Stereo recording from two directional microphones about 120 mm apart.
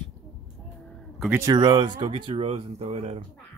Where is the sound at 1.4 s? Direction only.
30° right (ahead or behind); by 3.2 s 60° right (ahead or behind).